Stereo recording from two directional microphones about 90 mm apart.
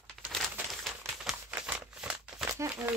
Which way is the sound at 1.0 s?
30° right (ahead or behind).